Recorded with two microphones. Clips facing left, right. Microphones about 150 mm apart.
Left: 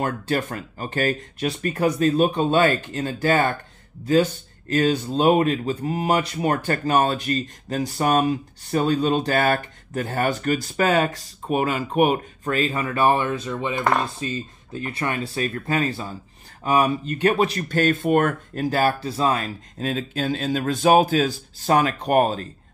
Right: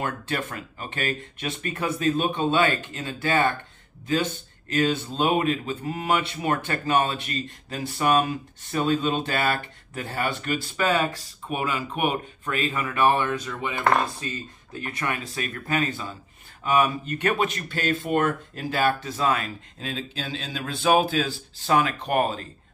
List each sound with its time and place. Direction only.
0.0 s speech: 40° left (ahead or behind)